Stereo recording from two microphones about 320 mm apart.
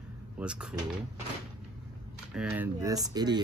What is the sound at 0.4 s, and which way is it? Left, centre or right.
Speech, centre.